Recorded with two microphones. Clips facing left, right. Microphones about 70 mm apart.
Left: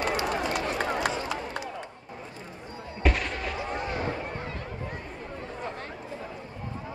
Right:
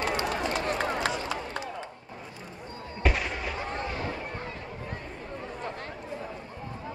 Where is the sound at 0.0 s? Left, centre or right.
Centre.